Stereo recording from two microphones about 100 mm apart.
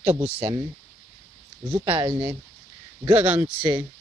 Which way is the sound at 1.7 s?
20° right (ahead or behind).